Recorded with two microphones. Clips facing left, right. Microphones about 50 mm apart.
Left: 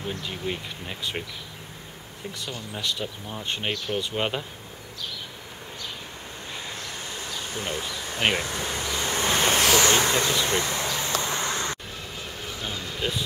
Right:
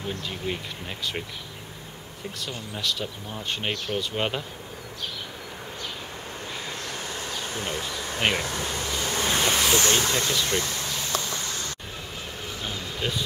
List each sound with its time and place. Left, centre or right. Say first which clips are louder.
0.2 s speech: even; centre
2.7 s speech: even; centre
7.2 s bee: left 1 dB; right
7.6 s speech: left 1 dB; centre
8.2 s bee: left 1 dB; centre
8.5 s waves: even; centre
9.6 s a sound: left 2 dB; left